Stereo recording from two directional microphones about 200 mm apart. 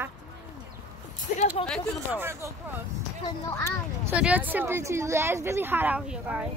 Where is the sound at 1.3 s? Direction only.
35° left (ahead or behind).